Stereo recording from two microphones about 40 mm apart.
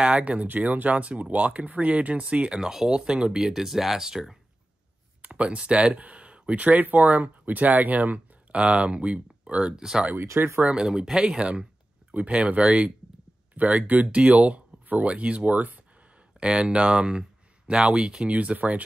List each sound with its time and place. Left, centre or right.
0.0 s speech: right
2.6 s speech: centre
5.3 s speech: right
8.5 s speech: right
9.8 s speech: centre; by 15.8 s right
16.3 s speech: right
18.3 s speech: right